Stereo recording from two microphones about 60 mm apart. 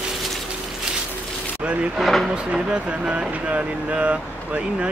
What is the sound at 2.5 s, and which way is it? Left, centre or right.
Speech, centre.